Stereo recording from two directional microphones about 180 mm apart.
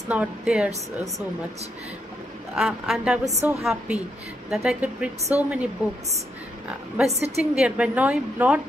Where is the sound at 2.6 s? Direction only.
Centre (ahead or behind).